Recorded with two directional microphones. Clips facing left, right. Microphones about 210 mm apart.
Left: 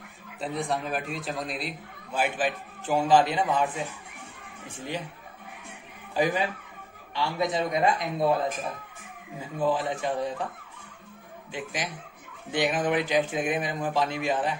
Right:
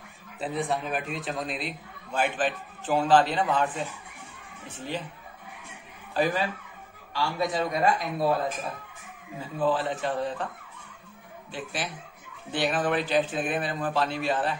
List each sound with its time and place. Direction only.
0.4 s a man's voice: centre (ahead or behind)
6.1 s a man's voice: 15° left (ahead or behind)
9.4 s a man's voice: 15° left (ahead or behind)
11.5 s a man's voice: 15° left (ahead or behind)